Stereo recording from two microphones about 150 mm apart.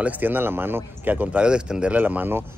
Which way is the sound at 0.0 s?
10° right (ahead or behind).